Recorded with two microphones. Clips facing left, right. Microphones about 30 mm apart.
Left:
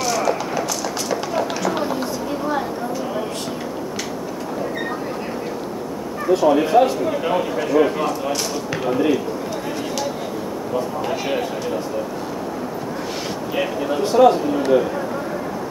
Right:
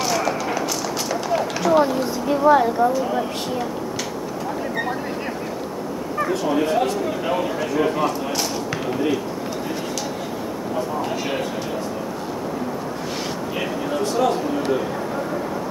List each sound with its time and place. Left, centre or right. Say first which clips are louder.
0.0 s a sound: left 1 dB; centre
2.4 s a woman's voice: right 10 dB; centre
2.9 s a man's voice: right 3 dB; centre
6.3 s a man's voice: left 7 dB; centre
11.0 s a man's voice: left 2 dB; centre
13.6 s speech: left 4 dB; centre